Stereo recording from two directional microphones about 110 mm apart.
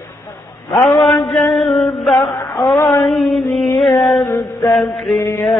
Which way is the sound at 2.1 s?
25° left (ahead or behind).